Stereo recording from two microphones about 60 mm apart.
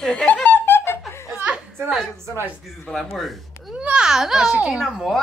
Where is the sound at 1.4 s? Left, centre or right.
Centre.